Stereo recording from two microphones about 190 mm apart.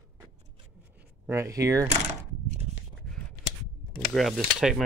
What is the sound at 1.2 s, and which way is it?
Speech, 15° right (ahead or behind).